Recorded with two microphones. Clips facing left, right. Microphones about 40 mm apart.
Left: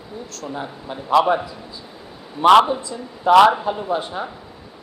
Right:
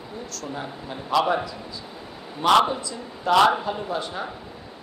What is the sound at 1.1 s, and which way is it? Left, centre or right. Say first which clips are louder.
Speech: left 6 dB; left.